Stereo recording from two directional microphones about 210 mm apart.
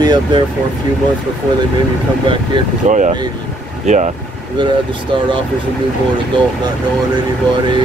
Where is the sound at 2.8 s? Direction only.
35° right (ahead or behind).